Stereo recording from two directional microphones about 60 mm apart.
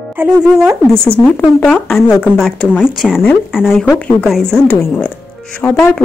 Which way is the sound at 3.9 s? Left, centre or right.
Left.